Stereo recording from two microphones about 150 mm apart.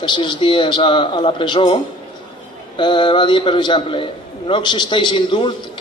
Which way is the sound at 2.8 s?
30° left (ahead or behind).